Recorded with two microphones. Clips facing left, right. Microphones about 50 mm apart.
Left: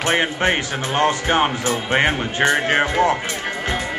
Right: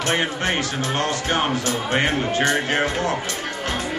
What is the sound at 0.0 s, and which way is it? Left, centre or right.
A man's voice, left.